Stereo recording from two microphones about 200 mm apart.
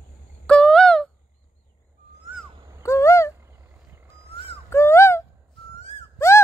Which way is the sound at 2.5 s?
20° right (ahead or behind).